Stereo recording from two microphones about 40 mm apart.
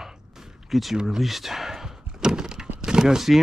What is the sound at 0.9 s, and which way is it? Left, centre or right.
Door, centre.